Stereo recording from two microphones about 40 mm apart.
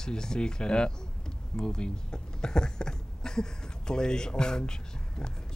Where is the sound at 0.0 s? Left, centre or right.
Centre.